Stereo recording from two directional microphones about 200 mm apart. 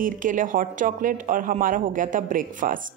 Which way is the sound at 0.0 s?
40° right (ahead or behind).